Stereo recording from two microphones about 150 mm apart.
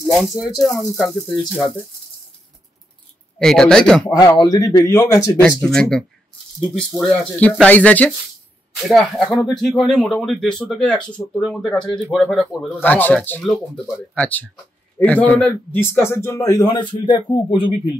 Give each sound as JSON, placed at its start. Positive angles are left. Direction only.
{"t": 0.0, "sound": "speech", "side_deg": 0}
{"t": 3.3, "sound": "speech", "side_deg": 5}
{"t": 4.2, "sound": "speech", "side_deg": 25}
{"t": 5.4, "sound": "a man's voice", "side_deg": 5}
{"t": 12.7, "sound": "a man's voice", "side_deg": 10}
{"t": 13.4, "sound": "a man's voice", "side_deg": 0}